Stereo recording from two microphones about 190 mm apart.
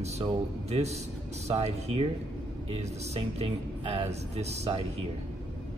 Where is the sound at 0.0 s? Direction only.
35° right (ahead or behind).